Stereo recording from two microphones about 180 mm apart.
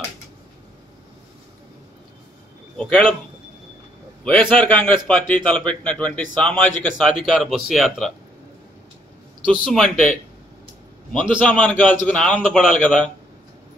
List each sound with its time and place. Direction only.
2.8 s speech: 5° left (ahead or behind)
4.2 s a man's voice: 5° left (ahead or behind)
9.4 s speech: 5° left (ahead or behind)
11.1 s a man's voice: 5° left (ahead or behind)